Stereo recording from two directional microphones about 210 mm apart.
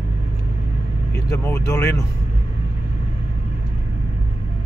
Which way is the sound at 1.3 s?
15° left (ahead or behind).